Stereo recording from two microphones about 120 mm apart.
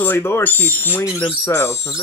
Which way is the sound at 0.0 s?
20° left (ahead or behind).